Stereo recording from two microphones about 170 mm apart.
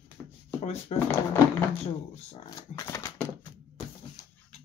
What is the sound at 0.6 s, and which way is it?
Speech, 40° left (ahead or behind).